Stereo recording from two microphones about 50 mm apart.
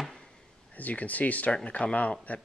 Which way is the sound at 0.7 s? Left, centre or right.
Left.